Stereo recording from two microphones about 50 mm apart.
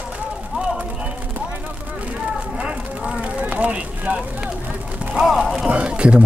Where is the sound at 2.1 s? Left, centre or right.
Right.